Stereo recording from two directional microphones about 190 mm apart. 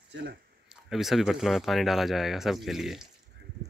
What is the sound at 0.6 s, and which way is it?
Speech, centre (ahead or behind).